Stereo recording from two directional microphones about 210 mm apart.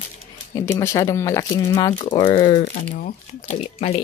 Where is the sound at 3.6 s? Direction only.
30° left (ahead or behind).